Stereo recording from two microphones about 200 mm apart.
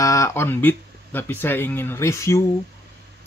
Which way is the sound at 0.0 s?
15° left (ahead or behind).